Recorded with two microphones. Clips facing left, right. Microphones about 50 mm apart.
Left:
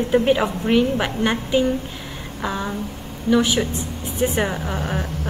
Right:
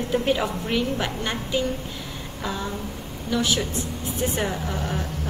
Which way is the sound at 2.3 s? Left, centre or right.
Left.